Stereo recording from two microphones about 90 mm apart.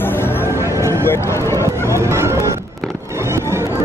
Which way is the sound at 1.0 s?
30° left (ahead or behind).